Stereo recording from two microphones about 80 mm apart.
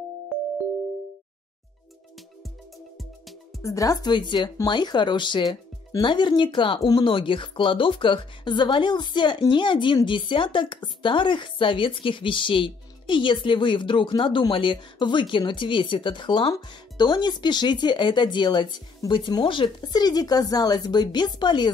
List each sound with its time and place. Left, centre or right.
3.6 s speech: left
4.1 s speech: left
5.5 s music: left
6.0 s speech: left
16.9 s speech: left
19.0 s speech: left